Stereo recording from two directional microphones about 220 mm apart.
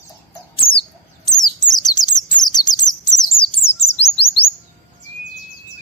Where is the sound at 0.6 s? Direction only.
25° left (ahead or behind).